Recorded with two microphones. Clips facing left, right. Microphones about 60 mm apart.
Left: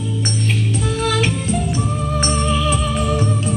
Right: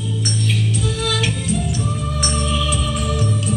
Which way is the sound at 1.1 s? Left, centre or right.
Left.